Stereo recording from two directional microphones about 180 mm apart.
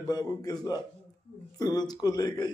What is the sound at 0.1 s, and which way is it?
Speech, 20° left (ahead or behind).